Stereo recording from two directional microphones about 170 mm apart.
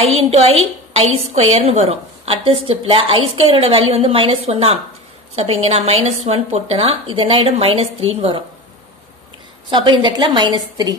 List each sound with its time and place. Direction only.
0.0 s a woman's voice: 35° right (ahead or behind)
9.7 s a woman's voice: 30° right (ahead or behind)